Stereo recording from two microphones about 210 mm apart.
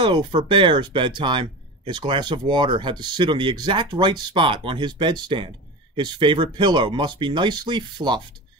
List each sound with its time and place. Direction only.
0.0 s speech: 20° right (ahead or behind)